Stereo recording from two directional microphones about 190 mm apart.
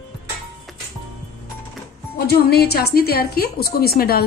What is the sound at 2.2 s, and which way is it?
A woman's voice, 55° left (ahead or behind).